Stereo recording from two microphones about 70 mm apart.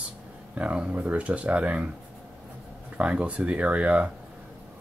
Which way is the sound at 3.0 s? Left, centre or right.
Centre.